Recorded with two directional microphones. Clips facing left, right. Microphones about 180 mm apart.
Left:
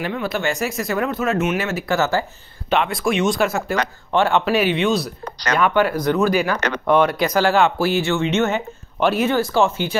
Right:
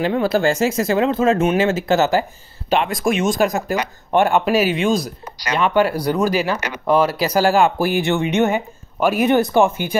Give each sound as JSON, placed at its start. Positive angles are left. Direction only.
{"t": 0.0, "sound": "speech", "side_deg": -35}
{"t": 2.7, "sound": "speech", "side_deg": -40}
{"t": 3.7, "sound": "speech", "side_deg": -10}
{"t": 4.5, "sound": "speech", "side_deg": -40}
{"t": 5.9, "sound": "speech", "side_deg": -10}
{"t": 6.3, "sound": "speech", "side_deg": -25}
{"t": 7.0, "sound": "speech", "side_deg": -5}
{"t": 9.7, "sound": "speech", "side_deg": -50}